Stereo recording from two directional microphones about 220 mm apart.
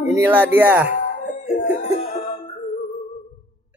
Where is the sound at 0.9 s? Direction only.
35° left (ahead or behind).